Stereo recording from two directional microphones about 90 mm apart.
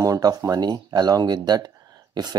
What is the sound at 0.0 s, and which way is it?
Speech, 45° right (ahead or behind).